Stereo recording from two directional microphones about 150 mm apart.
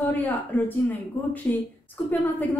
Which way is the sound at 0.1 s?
10° left (ahead or behind).